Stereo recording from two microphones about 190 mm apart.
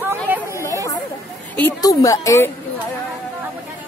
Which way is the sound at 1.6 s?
15° left (ahead or behind).